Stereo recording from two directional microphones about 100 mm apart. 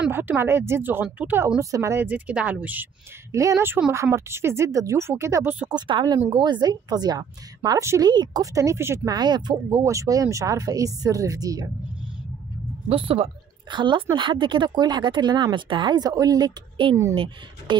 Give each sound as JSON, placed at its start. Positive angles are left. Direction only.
{"t": 0.1, "sound": "speech", "side_deg": -20}
{"t": 1.6, "sound": "speech", "side_deg": -30}
{"t": 2.0, "sound": "speech", "side_deg": -15}
{"t": 3.3, "sound": "speech", "side_deg": -30}
{"t": 5.7, "sound": "speech", "side_deg": -50}
{"t": 9.1, "sound": "speech", "side_deg": -45}
{"t": 9.7, "sound": "speech", "side_deg": -30}
{"t": 12.8, "sound": "speech", "side_deg": -75}
{"t": 13.7, "sound": "speech", "side_deg": -50}
{"t": 17.1, "sound": "speech", "side_deg": -60}